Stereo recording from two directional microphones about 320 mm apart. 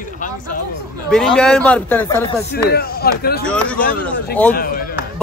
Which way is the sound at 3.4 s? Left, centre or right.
Centre.